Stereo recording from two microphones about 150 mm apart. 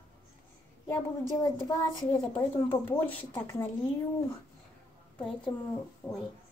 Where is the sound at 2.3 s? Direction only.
10° left (ahead or behind).